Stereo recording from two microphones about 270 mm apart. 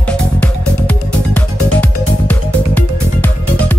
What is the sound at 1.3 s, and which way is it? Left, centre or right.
Music, centre.